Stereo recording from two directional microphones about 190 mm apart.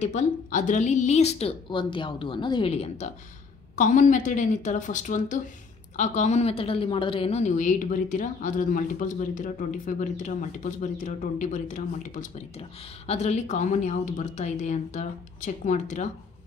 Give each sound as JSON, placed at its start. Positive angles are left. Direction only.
{"t": 0.0, "sound": "a woman's voice", "side_deg": 40}
{"t": 3.7, "sound": "a woman's voice", "side_deg": 40}